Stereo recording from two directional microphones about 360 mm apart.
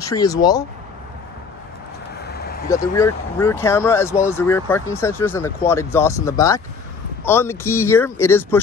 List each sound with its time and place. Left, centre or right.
0.0 s speech: centre
2.2 s vehicle: left
2.7 s speech: centre